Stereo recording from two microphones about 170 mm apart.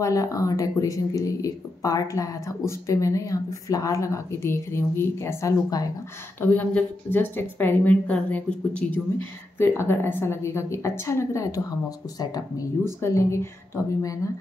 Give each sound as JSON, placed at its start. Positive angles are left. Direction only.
{"t": 0.0, "sound": "speech", "side_deg": 20}
{"t": 6.4, "sound": "a woman's voice", "side_deg": 10}